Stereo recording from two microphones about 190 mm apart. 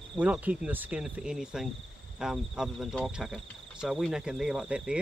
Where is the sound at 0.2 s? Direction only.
10° right (ahead or behind).